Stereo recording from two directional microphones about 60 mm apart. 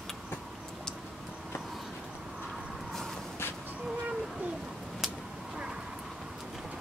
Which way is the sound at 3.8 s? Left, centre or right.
Centre.